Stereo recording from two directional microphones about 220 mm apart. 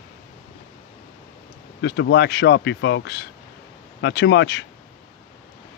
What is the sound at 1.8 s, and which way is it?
A man's voice, 50° left (ahead or behind).